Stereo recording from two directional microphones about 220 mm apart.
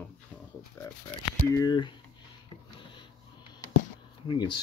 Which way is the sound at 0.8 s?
10° left (ahead or behind).